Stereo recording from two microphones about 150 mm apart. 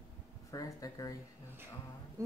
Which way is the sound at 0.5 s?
25° left (ahead or behind).